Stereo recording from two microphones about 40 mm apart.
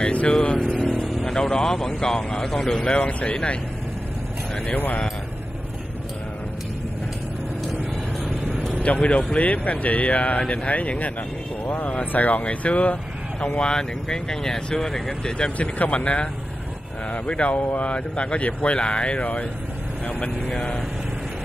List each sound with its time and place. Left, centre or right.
0.3 s vehicle: centre
1.2 s speech: centre
4.6 s speech: left
8.8 s speech: left
11.6 s speech: left
12.0 s speech: left
13.6 s speech: centre
15.5 s speech: left
20.1 s speech: left
20.4 s speech: left